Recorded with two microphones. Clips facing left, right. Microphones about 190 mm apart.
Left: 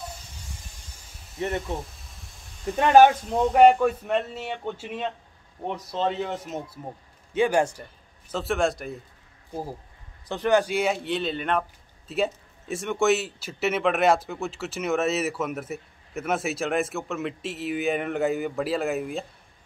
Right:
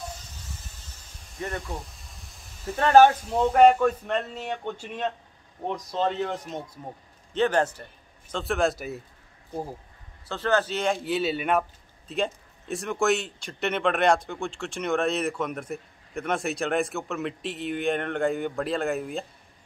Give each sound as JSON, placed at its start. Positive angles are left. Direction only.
{"t": 1.4, "sound": "speech", "side_deg": 25}
{"t": 2.7, "sound": "speech", "side_deg": 10}
{"t": 10.2, "sound": "speech", "side_deg": 15}